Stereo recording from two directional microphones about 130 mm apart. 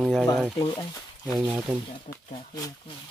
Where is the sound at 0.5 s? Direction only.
30° left (ahead or behind).